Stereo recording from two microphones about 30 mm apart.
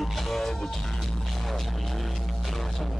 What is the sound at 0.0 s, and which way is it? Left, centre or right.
Music, centre.